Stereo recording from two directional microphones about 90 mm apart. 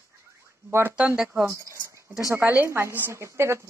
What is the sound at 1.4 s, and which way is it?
Speech, 35° right (ahead or behind).